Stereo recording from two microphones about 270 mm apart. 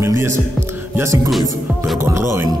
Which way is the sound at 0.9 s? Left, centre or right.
Centre.